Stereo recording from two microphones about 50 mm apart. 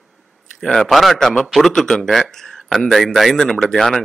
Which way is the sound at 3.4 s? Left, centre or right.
Centre.